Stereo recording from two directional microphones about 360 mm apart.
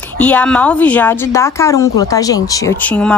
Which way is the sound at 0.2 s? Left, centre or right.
Centre.